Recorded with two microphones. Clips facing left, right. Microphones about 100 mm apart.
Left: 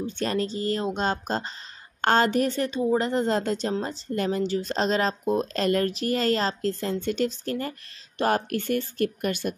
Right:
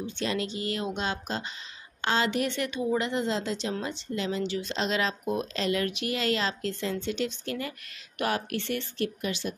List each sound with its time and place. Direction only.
0.0 s speech: 40° left (ahead or behind)